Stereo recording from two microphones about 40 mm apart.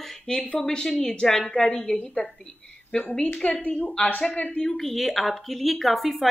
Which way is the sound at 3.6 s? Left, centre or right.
Left.